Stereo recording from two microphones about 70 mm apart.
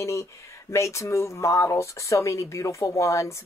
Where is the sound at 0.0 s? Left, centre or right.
Left.